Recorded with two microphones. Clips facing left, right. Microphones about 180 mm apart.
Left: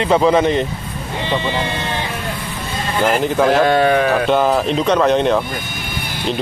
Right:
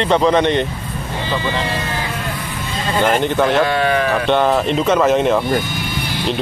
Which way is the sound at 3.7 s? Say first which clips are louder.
Left 3 dB; 50° left (ahead or behind).